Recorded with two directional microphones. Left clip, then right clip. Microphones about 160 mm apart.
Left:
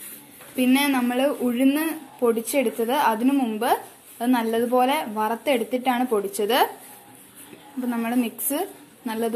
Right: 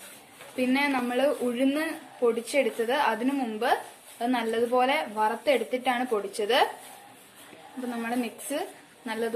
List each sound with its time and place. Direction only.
0.6 s a woman's voice: 20° left (ahead or behind)
7.9 s a woman's voice: 15° left (ahead or behind)